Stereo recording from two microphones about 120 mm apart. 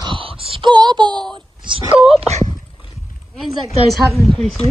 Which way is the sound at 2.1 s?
60° right (ahead or behind).